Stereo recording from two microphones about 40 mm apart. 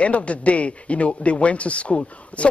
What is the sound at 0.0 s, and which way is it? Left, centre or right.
A woman's voice, left.